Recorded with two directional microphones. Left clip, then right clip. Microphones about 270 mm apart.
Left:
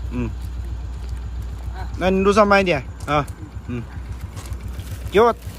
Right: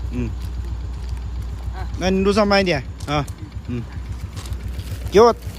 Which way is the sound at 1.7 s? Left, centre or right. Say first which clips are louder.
Left 2 dB; centre.